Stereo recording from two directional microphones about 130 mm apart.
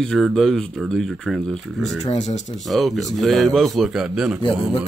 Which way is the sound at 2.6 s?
Centre (ahead or behind).